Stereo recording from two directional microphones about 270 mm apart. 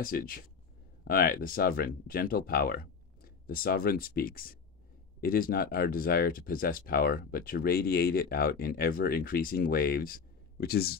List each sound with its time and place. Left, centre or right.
0.0 s speech: left